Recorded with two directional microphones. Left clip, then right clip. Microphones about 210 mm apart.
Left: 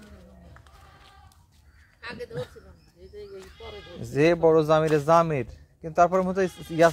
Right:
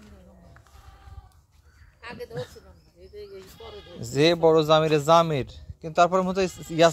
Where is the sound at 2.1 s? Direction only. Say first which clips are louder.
Left 1 dB; 5° right (ahead or behind).